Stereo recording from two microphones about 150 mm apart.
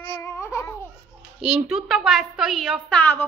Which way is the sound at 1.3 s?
5° right (ahead or behind).